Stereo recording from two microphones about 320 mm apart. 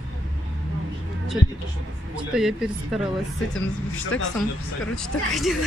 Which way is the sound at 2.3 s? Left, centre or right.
Centre.